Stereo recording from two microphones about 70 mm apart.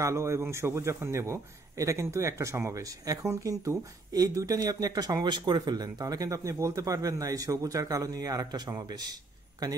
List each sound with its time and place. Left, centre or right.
0.0 s a man's voice: right
2.8 s a man's voice: right